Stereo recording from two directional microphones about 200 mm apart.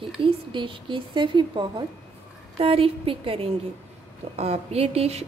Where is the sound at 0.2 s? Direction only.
25° right (ahead or behind).